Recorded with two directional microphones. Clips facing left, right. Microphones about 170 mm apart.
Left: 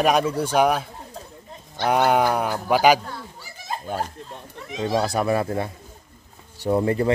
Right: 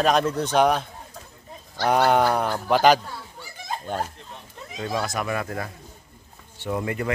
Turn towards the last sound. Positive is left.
turn(degrees=35)  # may be behind; listen again after turning